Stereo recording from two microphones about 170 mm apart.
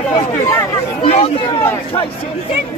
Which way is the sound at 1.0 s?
40° left (ahead or behind).